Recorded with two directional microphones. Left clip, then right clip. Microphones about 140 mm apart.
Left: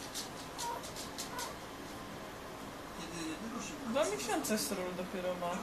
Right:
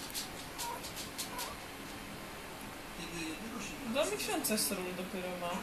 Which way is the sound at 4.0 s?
35° right (ahead or behind).